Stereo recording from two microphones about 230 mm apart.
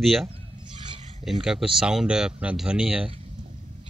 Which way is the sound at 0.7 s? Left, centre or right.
Centre.